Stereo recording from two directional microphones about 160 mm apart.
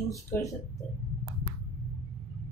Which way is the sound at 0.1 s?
20° left (ahead or behind).